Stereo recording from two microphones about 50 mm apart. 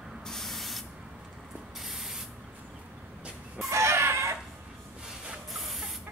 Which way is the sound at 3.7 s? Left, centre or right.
Right.